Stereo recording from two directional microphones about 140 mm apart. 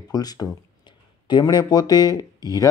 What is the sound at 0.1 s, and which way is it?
Speech, 30° left (ahead or behind).